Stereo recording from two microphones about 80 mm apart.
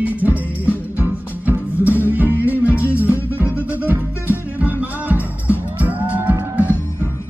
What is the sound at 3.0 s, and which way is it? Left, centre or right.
Music, right.